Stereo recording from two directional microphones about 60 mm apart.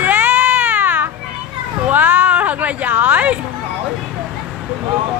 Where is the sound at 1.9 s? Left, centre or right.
Right.